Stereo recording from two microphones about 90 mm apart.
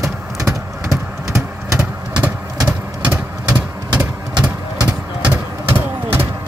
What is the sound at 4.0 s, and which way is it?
Vehicle, 10° right (ahead or behind).